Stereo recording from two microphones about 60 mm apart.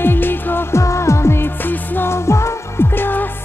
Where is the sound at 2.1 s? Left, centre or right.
Left.